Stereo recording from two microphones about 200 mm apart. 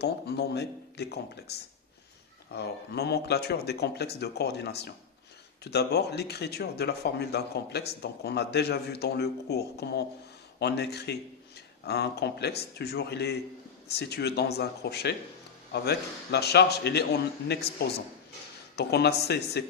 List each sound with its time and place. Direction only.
0.0 s speech: 55° left (ahead or behind)
18.8 s speech: 55° left (ahead or behind)